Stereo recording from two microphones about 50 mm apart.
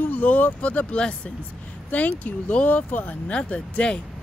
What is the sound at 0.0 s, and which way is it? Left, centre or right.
Speech, left.